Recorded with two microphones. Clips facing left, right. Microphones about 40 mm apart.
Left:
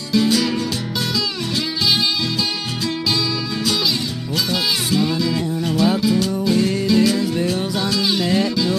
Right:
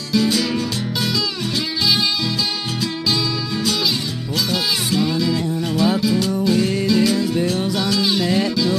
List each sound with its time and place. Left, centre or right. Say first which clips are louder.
4.3 s music: even; centre